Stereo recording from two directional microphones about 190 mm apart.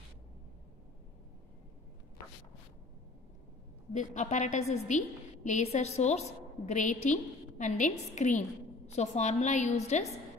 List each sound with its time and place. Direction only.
3.9 s a woman's voice: 40° left (ahead or behind)